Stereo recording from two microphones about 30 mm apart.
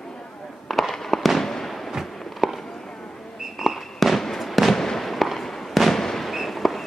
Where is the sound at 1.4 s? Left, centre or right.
Centre.